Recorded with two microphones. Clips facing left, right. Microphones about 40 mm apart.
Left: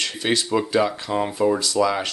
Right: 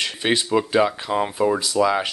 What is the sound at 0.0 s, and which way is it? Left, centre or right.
Speech, centre.